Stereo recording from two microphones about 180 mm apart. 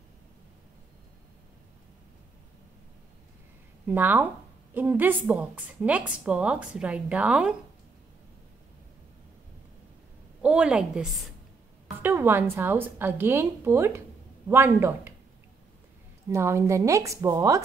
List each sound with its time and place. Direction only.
3.8 s a woman's voice: 10° right (ahead or behind)
10.4 s a woman's voice: 5° right (ahead or behind)
16.3 s a woman's voice: 15° right (ahead or behind)